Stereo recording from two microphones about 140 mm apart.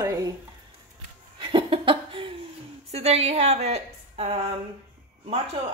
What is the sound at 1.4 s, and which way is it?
Laughter, 40° right (ahead or behind).